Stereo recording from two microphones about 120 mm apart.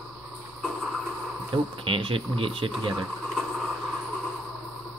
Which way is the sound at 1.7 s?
45° right (ahead or behind).